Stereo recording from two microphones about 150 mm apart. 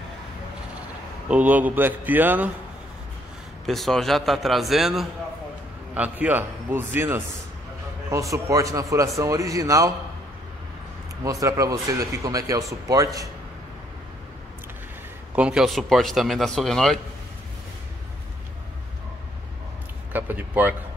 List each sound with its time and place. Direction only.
1.3 s a man's voice: 10° right (ahead or behind)
3.6 s a man's voice: centre (ahead or behind); by 9.9 s 20° right (ahead or behind)
11.2 s speech: 20° right (ahead or behind)
15.3 s a man's voice: 5° right (ahead or behind)
20.1 s speech: 15° right (ahead or behind)